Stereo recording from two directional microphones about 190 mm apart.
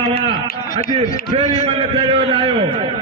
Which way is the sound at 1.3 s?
35° right (ahead or behind).